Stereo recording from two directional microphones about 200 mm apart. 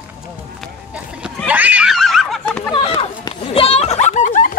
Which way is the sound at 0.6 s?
5° right (ahead or behind).